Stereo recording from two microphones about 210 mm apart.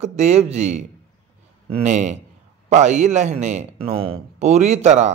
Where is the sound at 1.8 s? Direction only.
35° right (ahead or behind).